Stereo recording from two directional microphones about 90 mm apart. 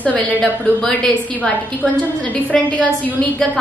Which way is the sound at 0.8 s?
10° left (ahead or behind).